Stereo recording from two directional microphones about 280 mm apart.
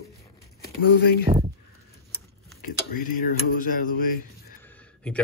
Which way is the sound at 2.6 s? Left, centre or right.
Left.